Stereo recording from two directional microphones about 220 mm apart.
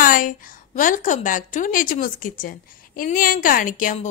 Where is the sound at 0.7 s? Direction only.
35° left (ahead or behind).